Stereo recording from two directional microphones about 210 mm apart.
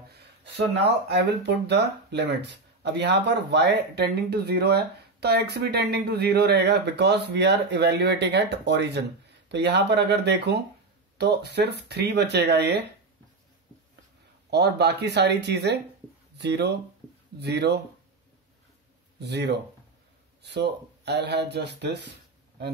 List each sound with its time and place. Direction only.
1.0 s speech: 55° right (ahead or behind)
14.5 s speech: 50° right (ahead or behind)
19.1 s speech: 55° right (ahead or behind)